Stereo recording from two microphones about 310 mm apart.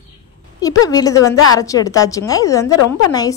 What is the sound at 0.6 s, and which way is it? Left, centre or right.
A woman's voice, centre.